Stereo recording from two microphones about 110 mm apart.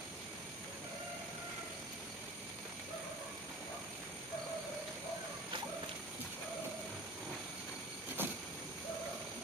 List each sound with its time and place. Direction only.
8.2 s vehicle: 20° right (ahead or behind)